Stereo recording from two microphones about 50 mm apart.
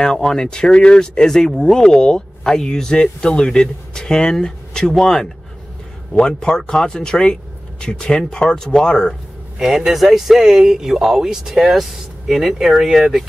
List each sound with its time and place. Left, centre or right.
0.0 s speech: centre
9.6 s speech: centre